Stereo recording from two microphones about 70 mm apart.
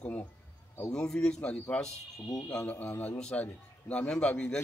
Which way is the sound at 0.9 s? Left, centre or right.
Centre.